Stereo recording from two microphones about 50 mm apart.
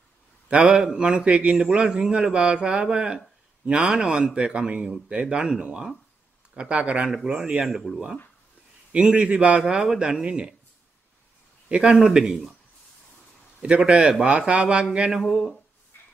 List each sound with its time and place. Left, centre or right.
0.5 s a man's voice: centre
9.1 s a man's voice: right
11.7 s a man's voice: centre
13.6 s a man's voice: centre
15.2 s speech: centre